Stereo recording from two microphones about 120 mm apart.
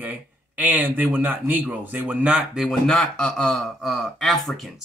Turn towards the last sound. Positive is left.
turn(degrees=0)  # may be behind; listen again after turning